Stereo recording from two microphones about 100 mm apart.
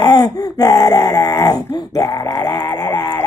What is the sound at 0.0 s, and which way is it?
Groan, 40° left (ahead or behind).